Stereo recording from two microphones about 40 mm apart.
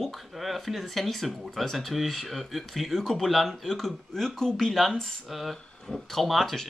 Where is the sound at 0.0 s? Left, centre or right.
Centre.